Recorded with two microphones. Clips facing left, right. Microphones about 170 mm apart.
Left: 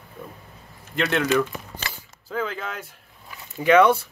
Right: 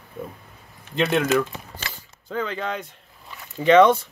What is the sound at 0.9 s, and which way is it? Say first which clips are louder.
Speech: right 2 dB; 20° right (ahead or behind).